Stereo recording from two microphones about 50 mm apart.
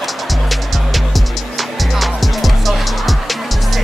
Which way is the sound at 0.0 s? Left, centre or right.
Centre.